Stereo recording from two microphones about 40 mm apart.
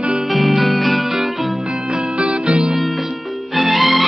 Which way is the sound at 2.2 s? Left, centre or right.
Right.